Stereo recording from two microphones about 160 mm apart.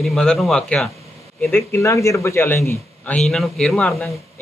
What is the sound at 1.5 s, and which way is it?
Speech, 15° left (ahead or behind).